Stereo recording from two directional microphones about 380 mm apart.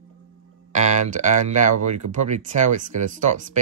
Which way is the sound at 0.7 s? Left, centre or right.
Centre.